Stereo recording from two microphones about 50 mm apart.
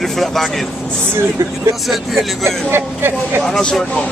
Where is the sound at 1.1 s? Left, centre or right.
Right.